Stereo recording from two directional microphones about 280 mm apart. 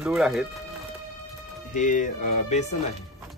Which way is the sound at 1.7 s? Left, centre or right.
Left.